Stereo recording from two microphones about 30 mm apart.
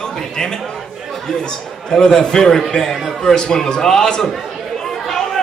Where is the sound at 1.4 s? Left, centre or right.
Left.